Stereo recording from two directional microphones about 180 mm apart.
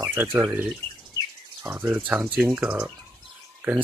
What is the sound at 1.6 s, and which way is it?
Speech, 10° right (ahead or behind).